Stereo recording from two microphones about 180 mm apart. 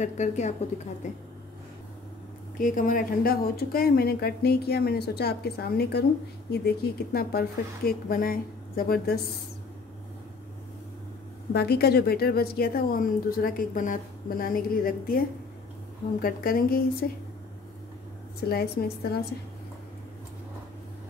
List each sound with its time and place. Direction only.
0.0 s a woman's voice: 40° left (ahead or behind)
2.6 s a woman's voice: 50° left (ahead or behind)
11.5 s a woman's voice: 60° left (ahead or behind)
18.5 s a woman's voice: 60° left (ahead or behind)